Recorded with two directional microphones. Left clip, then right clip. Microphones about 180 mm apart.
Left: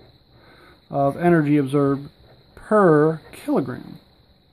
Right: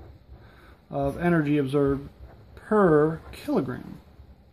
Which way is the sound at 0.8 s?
30° left (ahead or behind).